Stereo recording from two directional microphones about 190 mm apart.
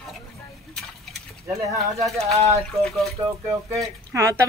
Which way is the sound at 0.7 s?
Centre (ahead or behind).